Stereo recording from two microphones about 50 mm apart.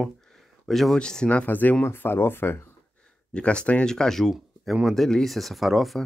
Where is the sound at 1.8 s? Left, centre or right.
Left.